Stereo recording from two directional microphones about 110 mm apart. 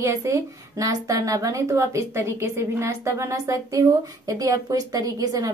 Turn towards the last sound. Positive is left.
turn(degrees=-35)  # may be behind; listen again after turning